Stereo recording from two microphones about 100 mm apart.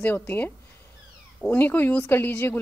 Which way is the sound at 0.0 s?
15° left (ahead or behind).